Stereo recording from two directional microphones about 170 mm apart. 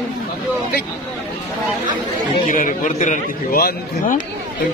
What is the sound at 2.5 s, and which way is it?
A man's voice, 50° left (ahead or behind).